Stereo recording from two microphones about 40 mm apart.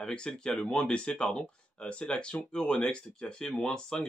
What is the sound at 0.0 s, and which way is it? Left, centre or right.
Speech, left.